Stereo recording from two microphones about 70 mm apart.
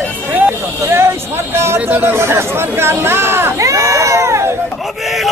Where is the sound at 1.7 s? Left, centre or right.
Right.